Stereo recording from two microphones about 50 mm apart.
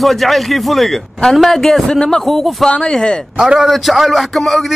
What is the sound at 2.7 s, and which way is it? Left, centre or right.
Speech, centre.